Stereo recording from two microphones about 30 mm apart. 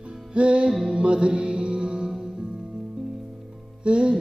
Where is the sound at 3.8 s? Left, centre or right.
Right.